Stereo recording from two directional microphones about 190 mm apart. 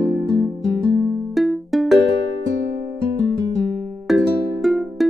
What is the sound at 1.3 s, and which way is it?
Music, centre (ahead or behind).